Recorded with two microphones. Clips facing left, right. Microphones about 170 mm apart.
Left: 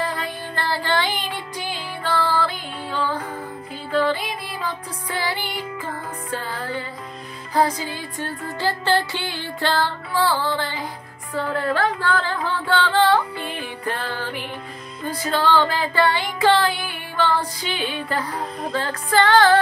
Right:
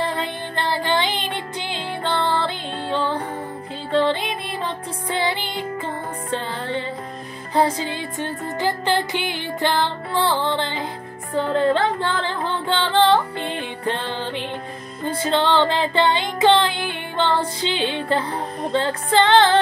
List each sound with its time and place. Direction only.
0.0 s music: 25° right (ahead or behind)